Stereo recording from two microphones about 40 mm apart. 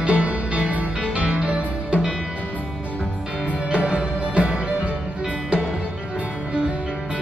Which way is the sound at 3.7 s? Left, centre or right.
Right.